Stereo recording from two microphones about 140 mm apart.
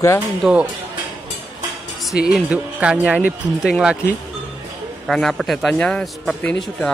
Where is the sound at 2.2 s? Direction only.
5° right (ahead or behind).